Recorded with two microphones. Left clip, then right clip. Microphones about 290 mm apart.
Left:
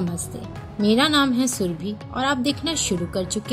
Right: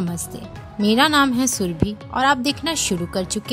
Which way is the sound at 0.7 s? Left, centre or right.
Right.